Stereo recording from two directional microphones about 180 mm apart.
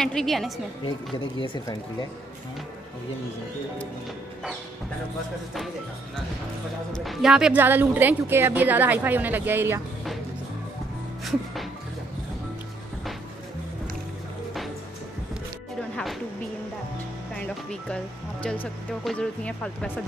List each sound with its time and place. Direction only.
0.0 s speech: 5° left (ahead or behind)
0.8 s speech: 25° left (ahead or behind)
7.1 s a woman's voice: 5° right (ahead or behind)
17.3 s speech: 5° left (ahead or behind)